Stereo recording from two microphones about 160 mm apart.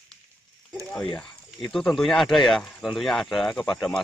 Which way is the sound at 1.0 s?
30° left (ahead or behind).